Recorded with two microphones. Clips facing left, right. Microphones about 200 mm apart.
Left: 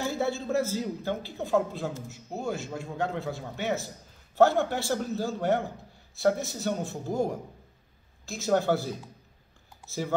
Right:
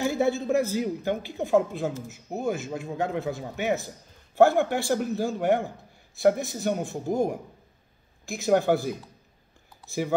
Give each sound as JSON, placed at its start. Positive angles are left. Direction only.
{"t": 0.0, "sound": "a man's voice", "side_deg": -15}